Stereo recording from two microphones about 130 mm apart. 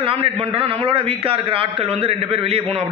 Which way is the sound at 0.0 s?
45° right (ahead or behind).